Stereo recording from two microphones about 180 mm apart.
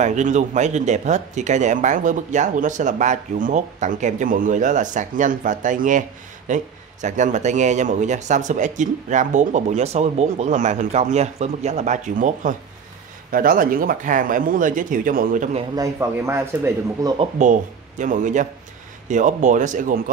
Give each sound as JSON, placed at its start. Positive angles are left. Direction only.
{"t": 0.0, "sound": "speech", "side_deg": -40}
{"t": 15.7, "sound": "speech", "side_deg": -15}
{"t": 17.4, "sound": "speech", "side_deg": -45}